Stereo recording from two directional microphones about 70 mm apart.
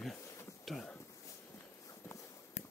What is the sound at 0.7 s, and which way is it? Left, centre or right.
Speech, centre.